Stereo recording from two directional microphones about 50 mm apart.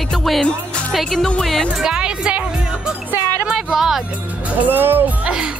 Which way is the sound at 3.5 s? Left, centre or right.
Centre.